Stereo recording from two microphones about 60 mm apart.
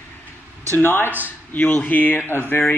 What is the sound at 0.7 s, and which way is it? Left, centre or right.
Speech, left.